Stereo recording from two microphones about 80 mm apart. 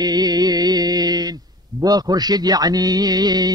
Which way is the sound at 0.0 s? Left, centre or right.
Right.